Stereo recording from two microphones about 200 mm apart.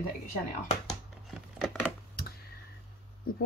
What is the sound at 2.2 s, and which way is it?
Clicking, 50° left (ahead or behind).